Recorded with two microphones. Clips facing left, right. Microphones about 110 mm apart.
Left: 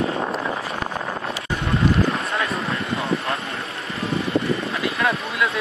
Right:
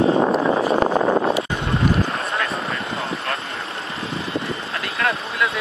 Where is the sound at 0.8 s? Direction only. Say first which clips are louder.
Right 10 dB; 50° right (ahead or behind).